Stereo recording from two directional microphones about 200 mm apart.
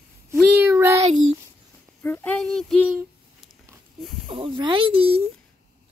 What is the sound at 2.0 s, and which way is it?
Child singing, 5° left (ahead or behind).